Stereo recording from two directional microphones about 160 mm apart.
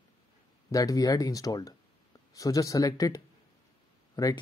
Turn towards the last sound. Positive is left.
turn(degrees=25)  # may be behind; listen again after turning